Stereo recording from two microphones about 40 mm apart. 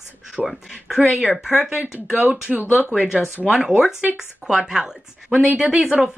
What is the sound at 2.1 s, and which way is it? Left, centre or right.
Speech, right.